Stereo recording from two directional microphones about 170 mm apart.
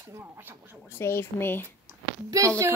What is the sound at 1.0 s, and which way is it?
Speech, 15° left (ahead or behind).